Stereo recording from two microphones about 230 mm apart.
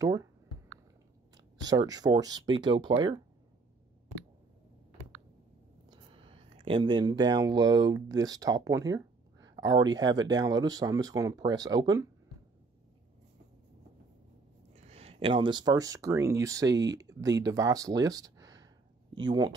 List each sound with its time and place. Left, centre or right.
0.0 s speech: centre
1.3 s speech: centre
5.9 s speech: right
14.8 s speech: right